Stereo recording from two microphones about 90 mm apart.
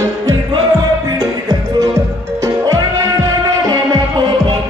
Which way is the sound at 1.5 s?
35° right (ahead or behind).